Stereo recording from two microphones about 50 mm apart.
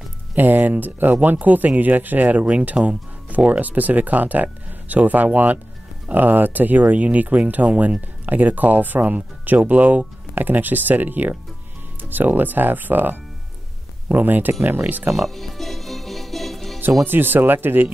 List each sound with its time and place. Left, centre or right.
0.3 s speech: right
15.2 s music: centre
17.0 s speech: right